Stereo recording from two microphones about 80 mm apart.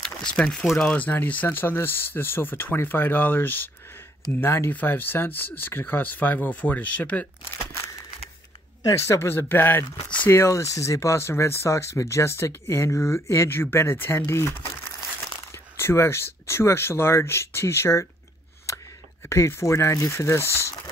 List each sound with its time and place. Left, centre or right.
0.0 s speech: centre
7.5 s a sound: left
8.8 s speech: left; by 10.3 s centre
10.3 s speech: left
19.2 s speech: left